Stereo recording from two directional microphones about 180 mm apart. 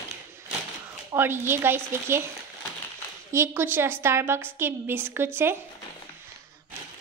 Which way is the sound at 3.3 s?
15° right (ahead or behind).